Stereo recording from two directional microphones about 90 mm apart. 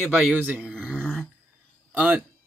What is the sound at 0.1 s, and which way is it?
Speech, 15° right (ahead or behind).